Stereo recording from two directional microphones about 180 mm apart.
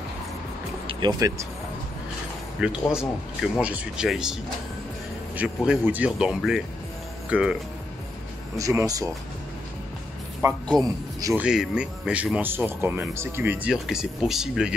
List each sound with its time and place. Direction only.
0.8 s music: 25° right (ahead or behind)
2.6 s speech: 5° right (ahead or behind)
8.5 s speech: 20° right (ahead or behind)
10.4 s speech: 15° right (ahead or behind)
11.3 s speech: 5° right (ahead or behind)